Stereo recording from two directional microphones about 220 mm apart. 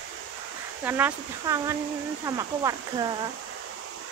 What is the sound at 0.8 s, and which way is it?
Speech, 10° right (ahead or behind).